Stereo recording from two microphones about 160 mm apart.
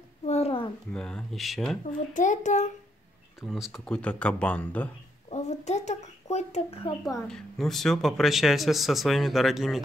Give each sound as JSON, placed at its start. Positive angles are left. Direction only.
{"t": 0.3, "sound": "a sound", "side_deg": 40}
{"t": 0.9, "sound": "speech", "side_deg": 5}
{"t": 1.9, "sound": "a child's voice", "side_deg": 50}
{"t": 3.3, "sound": "speech", "side_deg": 0}
{"t": 5.3, "sound": "speech", "side_deg": 45}
{"t": 7.2, "sound": "speech", "side_deg": 5}